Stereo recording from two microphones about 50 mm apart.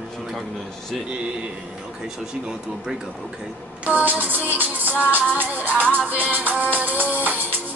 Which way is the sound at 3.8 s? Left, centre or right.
Right.